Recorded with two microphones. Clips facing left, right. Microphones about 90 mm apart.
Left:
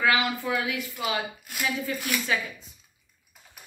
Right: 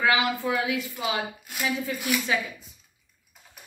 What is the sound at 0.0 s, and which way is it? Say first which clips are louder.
A woman's voice: right 1 dB; 25° right (ahead or behind).